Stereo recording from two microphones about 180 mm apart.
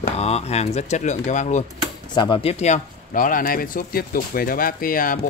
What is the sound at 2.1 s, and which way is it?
Speech, 25° left (ahead or behind).